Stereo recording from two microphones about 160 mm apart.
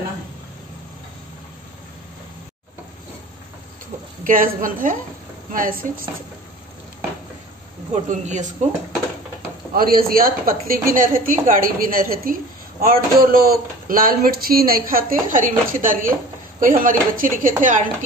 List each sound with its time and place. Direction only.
4.2 s speech: 60° right (ahead or behind)
7.9 s a man's voice: 50° right (ahead or behind)
9.8 s speech: 65° right (ahead or behind)